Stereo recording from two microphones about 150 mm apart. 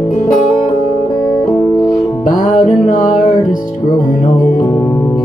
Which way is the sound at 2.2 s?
60° left (ahead or behind).